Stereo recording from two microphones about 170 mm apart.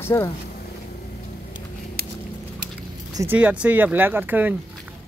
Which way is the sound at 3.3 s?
5° right (ahead or behind).